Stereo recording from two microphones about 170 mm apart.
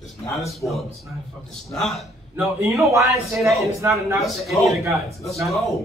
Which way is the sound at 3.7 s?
15° right (ahead or behind).